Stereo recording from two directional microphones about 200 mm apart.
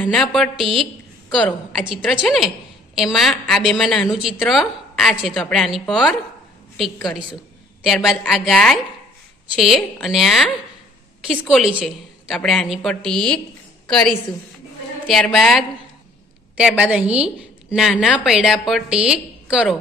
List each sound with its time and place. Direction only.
0.0 s a woman's voice: 5° left (ahead or behind)